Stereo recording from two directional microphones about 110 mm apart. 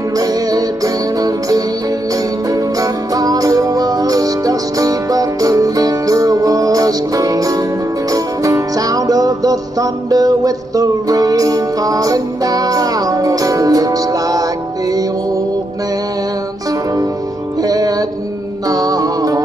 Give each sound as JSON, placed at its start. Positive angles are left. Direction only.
{"t": 0.2, "sound": "music", "side_deg": -35}
{"t": 2.5, "sound": "music", "side_deg": -30}
{"t": 17.6, "sound": "music", "side_deg": -35}